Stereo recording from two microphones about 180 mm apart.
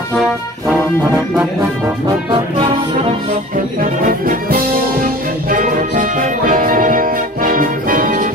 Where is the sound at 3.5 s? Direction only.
50° right (ahead or behind).